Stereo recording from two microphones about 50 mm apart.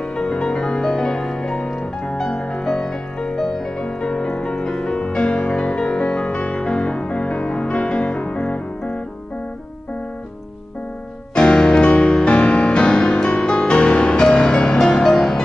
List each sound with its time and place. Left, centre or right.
0.0 s music: centre
2.2 s music: left
2.6 s music: centre
11.3 s music: centre